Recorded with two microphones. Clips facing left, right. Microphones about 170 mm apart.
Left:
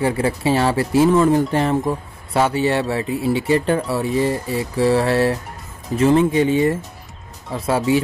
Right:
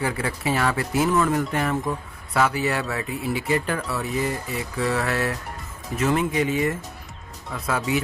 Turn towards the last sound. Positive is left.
turn(degrees=30)  # may be behind; listen again after turning